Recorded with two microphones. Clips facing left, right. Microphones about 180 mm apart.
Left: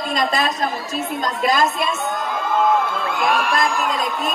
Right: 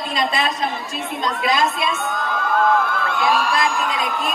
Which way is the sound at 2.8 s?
20° left (ahead or behind).